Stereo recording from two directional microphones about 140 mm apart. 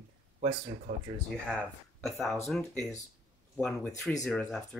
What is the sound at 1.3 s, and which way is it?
Speech, 5° left (ahead or behind).